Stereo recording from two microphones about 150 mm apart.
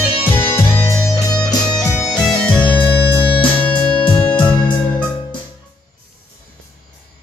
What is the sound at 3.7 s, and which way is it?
Music, 30° left (ahead or behind).